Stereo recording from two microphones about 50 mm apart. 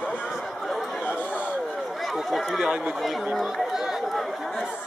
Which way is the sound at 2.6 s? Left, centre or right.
Centre.